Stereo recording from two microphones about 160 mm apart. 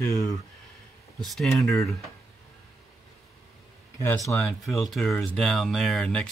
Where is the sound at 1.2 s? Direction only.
Centre (ahead or behind).